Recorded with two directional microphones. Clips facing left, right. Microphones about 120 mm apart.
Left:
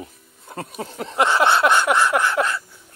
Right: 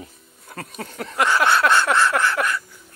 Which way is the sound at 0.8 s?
20° left (ahead or behind).